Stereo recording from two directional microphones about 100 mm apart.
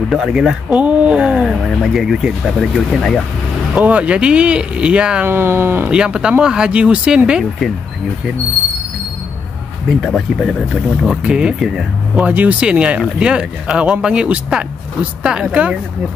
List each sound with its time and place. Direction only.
0.1 s speech: 5° right (ahead or behind)
3.7 s speech: 15° right (ahead or behind)
5.3 s speech: 25° right (ahead or behind)
5.9 s speech: 10° right (ahead or behind)
10.0 s speech: 5° left (ahead or behind)